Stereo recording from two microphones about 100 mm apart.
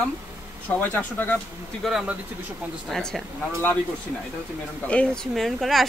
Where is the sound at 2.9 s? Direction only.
5° left (ahead or behind).